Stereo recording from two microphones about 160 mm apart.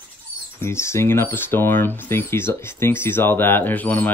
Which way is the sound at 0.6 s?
15° left (ahead or behind).